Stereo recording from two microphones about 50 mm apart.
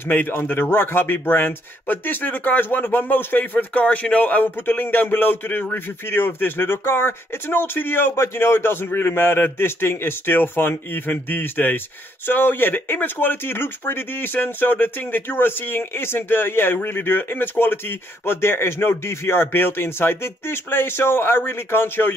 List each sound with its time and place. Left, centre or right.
0.3 s speech: left
3.5 s speech: left